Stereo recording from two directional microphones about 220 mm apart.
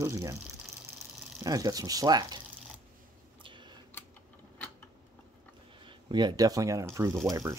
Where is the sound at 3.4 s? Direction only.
20° right (ahead or behind).